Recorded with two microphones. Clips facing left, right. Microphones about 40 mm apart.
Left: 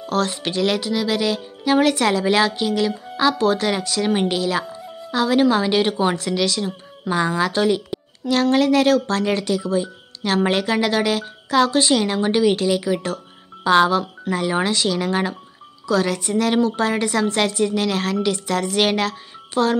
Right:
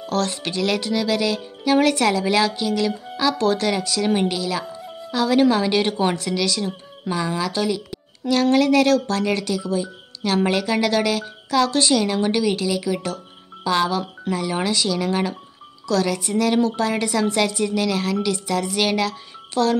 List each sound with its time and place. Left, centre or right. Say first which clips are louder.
0.1 s speech: left 2 dB; centre
0.7 s speech: even; centre
4.7 s music: even; centre
5.1 s speech: even; centre
6.3 s speech: left 1 dB; centre
7.1 s a woman's voice: left 4 dB; left
8.5 s speech: even; centre